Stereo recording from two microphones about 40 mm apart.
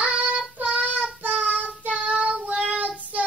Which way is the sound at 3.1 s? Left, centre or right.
Right.